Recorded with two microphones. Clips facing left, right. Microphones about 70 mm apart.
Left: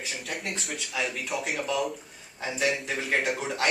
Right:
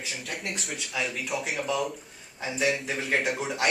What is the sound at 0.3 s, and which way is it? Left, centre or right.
Speech, centre.